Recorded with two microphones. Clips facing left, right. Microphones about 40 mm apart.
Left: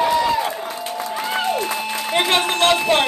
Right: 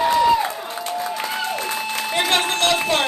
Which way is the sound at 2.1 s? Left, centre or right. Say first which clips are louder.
Left 2 dB; centre.